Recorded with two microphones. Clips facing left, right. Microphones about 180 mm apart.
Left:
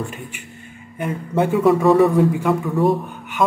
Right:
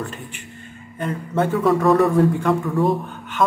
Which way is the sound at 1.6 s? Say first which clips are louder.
Left 3 dB; centre (ahead or behind).